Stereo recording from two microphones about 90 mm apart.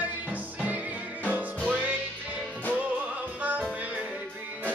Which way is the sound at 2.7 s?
15° right (ahead or behind).